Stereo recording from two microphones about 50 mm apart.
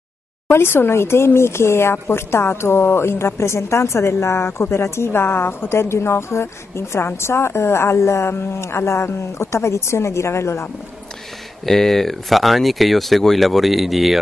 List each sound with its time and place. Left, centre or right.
0.5 s a woman's voice: left
11.6 s speech: centre